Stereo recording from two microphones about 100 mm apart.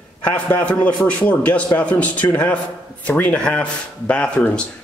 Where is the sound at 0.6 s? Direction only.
15° left (ahead or behind).